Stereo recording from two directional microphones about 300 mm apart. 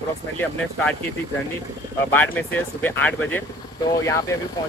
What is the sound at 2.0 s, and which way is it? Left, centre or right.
Speech, centre.